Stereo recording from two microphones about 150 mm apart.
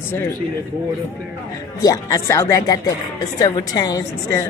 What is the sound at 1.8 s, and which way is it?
Speech, 25° left (ahead or behind).